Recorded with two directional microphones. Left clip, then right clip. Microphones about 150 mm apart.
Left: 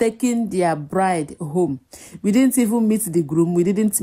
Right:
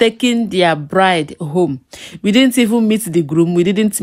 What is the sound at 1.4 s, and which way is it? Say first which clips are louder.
Speech: right 5 dB; 35° right (ahead or behind).